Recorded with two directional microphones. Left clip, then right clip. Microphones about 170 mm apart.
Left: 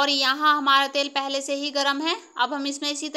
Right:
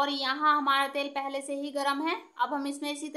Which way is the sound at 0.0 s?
35° left (ahead or behind).